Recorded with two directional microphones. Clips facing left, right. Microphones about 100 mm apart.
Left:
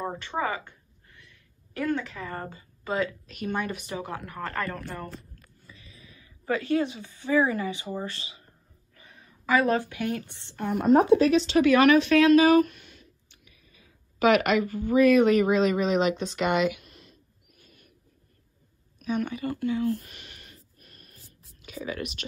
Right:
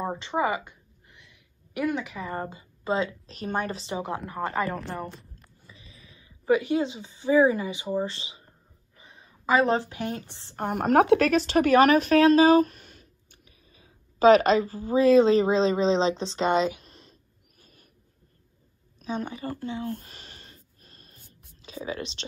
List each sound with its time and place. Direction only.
0.0 s a woman's voice: 15° right (ahead or behind); by 3.8 s 35° right (ahead or behind)
3.8 s speech: 20° right (ahead or behind)
4.6 s speech: centre (ahead or behind)
5.7 s a woman's voice: 25° right (ahead or behind)
10.7 s speech: 70° right (ahead or behind); by 17.1 s 30° right (ahead or behind)
17.6 s owl: 35° right (ahead or behind)
18.9 s a sound: 30° right (ahead or behind)